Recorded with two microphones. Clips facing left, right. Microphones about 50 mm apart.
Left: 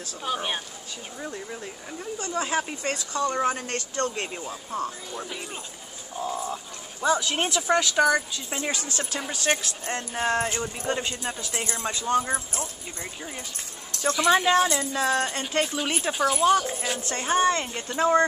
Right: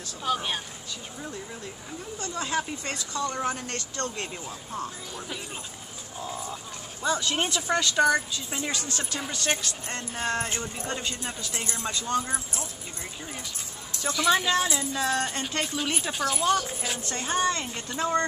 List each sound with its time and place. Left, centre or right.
0.2 s a woman's voice: centre; by 3.3 s left
3.3 s speech: centre
3.5 s a woman's voice: left
6.1 s speech: centre
8.5 s a woman's voice: left
14.1 s speech: centre
15.2 s speech: centre
17.1 s speech: left